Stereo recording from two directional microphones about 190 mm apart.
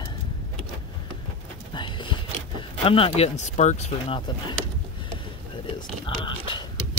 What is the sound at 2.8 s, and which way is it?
Speech, 30° left (ahead or behind).